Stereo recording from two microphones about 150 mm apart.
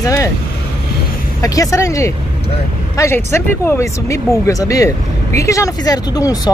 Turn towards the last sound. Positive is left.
turn(degrees=25)  # may be behind; listen again after turning